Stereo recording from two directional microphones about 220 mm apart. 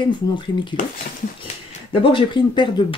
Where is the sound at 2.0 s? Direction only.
20° left (ahead or behind).